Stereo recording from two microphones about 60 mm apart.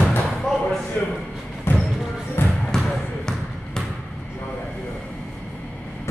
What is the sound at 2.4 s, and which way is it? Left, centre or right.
Basketball bounce, left.